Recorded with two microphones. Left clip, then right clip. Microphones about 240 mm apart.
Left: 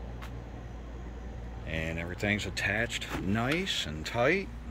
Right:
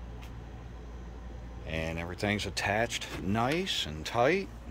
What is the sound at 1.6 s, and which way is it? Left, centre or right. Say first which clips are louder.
Speech: even; centre.